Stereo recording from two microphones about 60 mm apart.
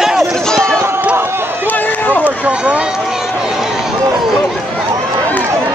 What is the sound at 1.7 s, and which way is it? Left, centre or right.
Run, left.